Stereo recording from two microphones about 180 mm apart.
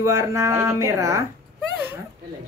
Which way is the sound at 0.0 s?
15° right (ahead or behind).